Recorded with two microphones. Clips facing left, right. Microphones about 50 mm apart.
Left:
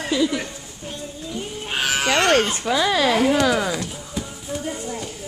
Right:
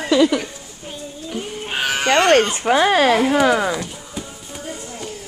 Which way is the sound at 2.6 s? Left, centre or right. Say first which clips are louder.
Right 5 dB; right.